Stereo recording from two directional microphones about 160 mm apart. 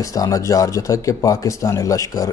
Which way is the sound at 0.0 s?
20° left (ahead or behind).